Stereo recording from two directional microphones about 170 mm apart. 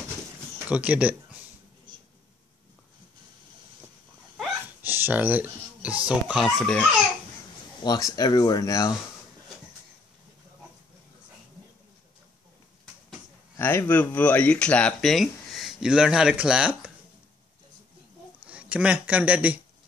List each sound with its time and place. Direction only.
0.7 s speech: 10° right (ahead or behind)
4.8 s a sound: 10° right (ahead or behind)
6.0 s speech: 5° right (ahead or behind)
7.8 s speech: 25° left (ahead or behind)
13.6 s speech: 15° left (ahead or behind); by 16.9 s 5° right (ahead or behind)
18.5 s speech: 10° right (ahead or behind)